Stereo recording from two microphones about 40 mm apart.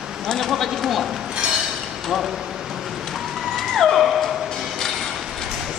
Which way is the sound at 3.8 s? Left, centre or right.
Centre.